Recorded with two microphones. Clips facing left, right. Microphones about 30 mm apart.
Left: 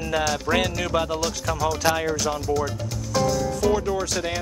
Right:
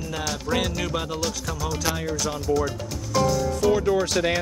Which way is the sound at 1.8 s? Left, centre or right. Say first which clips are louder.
Left 4 dB; left.